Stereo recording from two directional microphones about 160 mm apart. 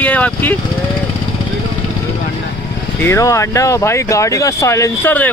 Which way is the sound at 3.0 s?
20° left (ahead or behind).